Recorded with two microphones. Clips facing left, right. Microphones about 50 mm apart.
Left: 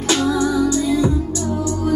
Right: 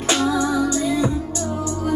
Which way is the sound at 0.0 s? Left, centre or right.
Right.